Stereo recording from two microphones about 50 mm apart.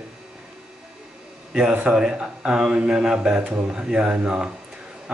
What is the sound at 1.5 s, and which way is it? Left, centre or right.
Speech, centre.